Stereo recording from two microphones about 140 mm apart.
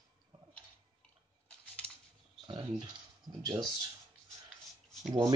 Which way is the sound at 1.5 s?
5° left (ahead or behind).